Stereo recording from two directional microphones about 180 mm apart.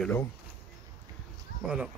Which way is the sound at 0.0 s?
10° left (ahead or behind).